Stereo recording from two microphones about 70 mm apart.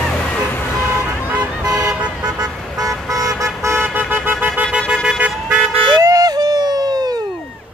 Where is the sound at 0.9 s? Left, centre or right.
Right.